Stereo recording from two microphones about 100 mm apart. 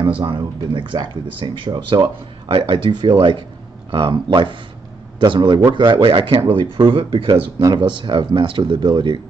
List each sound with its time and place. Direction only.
0.0 s speech: 55° right (ahead or behind)